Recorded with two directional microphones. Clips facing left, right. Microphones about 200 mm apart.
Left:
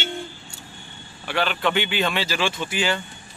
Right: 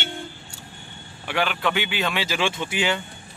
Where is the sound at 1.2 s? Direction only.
10° right (ahead or behind).